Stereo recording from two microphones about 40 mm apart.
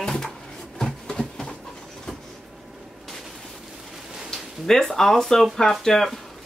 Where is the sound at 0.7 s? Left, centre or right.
Centre.